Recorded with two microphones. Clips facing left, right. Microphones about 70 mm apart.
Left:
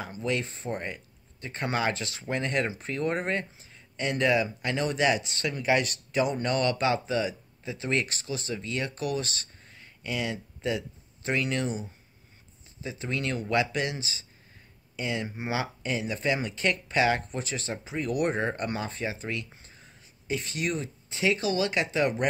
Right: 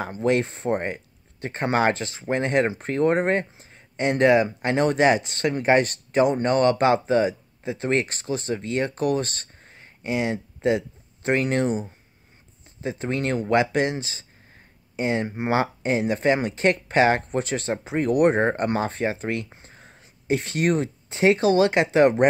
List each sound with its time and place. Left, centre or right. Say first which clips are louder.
0.0 s speech: right 8 dB; right
15.0 s speech: right 8 dB; right